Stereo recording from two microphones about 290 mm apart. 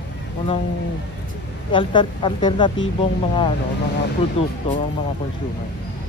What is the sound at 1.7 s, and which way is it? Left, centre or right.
Speech, centre.